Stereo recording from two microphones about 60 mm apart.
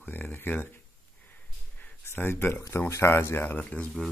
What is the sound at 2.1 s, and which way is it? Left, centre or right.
Speech, left.